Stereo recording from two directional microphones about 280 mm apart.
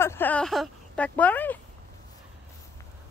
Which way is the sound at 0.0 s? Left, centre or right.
Centre.